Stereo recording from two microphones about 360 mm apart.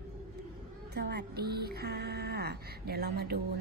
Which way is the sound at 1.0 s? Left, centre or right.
Right.